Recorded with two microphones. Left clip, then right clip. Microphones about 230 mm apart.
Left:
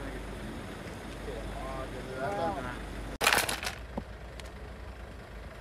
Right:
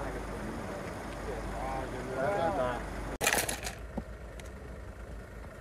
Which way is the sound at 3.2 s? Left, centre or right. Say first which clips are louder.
Left 4 dB; left.